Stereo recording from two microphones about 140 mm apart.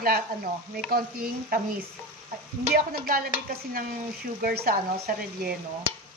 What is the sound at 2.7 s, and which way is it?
Speech, 90° right.